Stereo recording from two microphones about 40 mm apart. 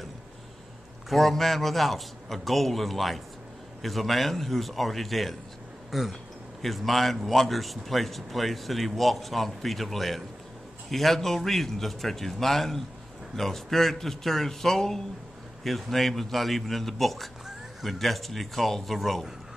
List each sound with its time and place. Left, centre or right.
1.0 s speech: centre